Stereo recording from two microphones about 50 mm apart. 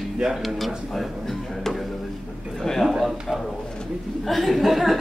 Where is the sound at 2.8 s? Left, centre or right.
Centre.